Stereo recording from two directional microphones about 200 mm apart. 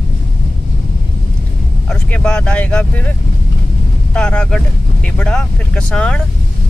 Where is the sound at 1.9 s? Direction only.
5° left (ahead or behind).